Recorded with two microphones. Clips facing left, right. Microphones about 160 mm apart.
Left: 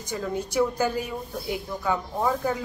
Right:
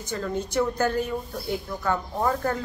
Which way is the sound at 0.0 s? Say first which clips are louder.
Even; 10° left (ahead or behind).